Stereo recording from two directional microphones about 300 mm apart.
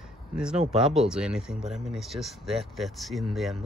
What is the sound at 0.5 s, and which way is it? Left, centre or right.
Speech, right.